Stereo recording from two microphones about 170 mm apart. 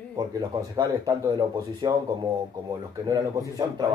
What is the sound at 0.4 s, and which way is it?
Speech, 20° right (ahead or behind).